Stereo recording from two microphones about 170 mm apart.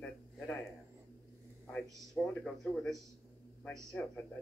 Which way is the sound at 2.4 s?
5° left (ahead or behind).